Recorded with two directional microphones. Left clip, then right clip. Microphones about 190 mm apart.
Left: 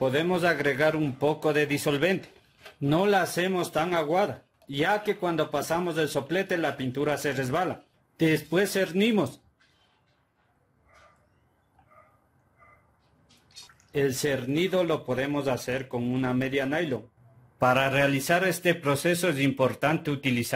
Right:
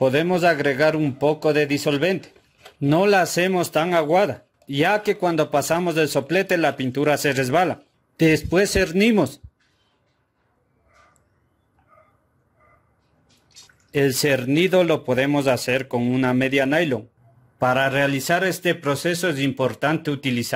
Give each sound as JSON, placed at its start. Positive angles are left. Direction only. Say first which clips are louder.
{"t": 0.0, "sound": "speech", "louder": "right 7 dB", "side_deg": -30}
{"t": 13.9, "sound": "speech", "louder": "right 7 dB", "side_deg": -45}
{"t": 17.6, "sound": "speech", "louder": "right 4 dB", "side_deg": -20}